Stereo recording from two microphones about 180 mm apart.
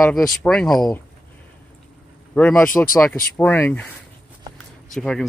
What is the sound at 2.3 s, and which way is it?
Speech, 5° left (ahead or behind).